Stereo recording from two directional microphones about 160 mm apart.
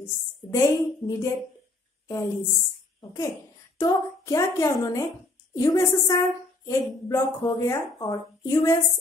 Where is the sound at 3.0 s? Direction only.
20° left (ahead or behind).